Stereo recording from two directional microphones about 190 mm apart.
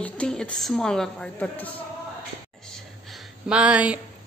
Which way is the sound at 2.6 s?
Centre (ahead or behind).